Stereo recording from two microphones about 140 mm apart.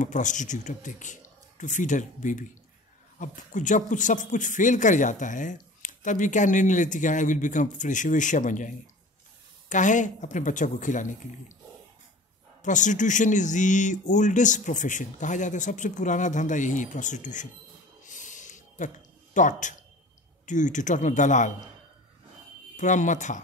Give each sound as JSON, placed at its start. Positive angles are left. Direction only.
{"t": 0.0, "sound": "speech", "side_deg": 60}
{"t": 12.6, "sound": "speech", "side_deg": 60}
{"t": 18.0, "sound": "a sound", "side_deg": 65}
{"t": 19.3, "sound": "speech", "side_deg": 65}
{"t": 22.8, "sound": "speech", "side_deg": 60}